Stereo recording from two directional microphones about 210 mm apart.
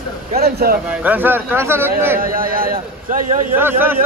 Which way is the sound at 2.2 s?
40° right (ahead or behind).